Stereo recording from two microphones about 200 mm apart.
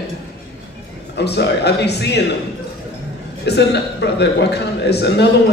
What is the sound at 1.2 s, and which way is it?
A man's voice, 55° left (ahead or behind).